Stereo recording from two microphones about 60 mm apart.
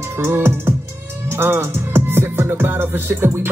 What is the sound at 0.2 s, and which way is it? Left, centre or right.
Music, right.